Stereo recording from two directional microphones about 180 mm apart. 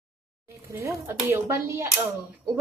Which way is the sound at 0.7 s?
15° right (ahead or behind).